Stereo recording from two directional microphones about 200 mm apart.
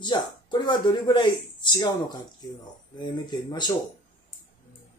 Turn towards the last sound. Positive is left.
turn(degrees=20)  # may be behind; listen again after turning